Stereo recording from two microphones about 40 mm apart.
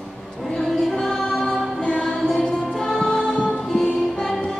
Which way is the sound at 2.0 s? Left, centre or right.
Centre.